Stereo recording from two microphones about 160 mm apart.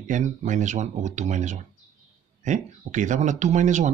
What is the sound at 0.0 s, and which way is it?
Speech, 50° right (ahead or behind).